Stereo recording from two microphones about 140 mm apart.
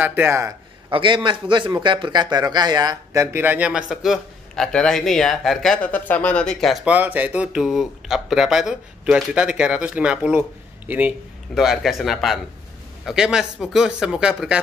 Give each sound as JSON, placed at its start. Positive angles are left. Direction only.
{"t": 0.0, "sound": "a man's voice", "side_deg": -15}
{"t": 0.8, "sound": "a man's voice", "side_deg": -35}
{"t": 5.9, "sound": "speech", "side_deg": 10}